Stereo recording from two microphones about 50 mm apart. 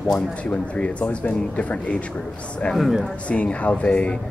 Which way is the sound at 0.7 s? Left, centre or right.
Left.